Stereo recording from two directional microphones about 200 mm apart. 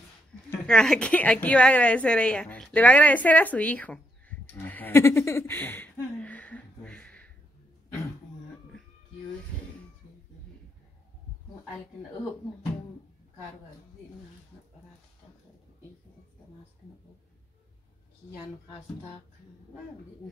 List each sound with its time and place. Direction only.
0.5 s a woman's voice: 5° left (ahead or behind)